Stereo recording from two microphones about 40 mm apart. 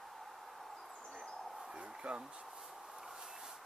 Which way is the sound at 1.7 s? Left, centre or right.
Right.